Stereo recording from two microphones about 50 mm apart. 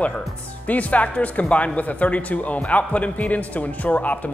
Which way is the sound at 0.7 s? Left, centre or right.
Left.